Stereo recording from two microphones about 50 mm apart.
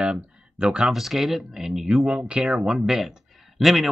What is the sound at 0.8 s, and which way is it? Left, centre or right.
Speech, centre.